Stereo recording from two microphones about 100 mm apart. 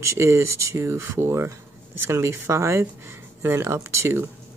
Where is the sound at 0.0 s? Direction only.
30° right (ahead or behind).